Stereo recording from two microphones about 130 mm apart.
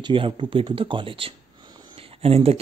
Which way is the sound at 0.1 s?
40° right (ahead or behind).